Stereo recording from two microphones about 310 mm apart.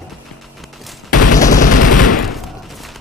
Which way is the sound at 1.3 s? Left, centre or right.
Left.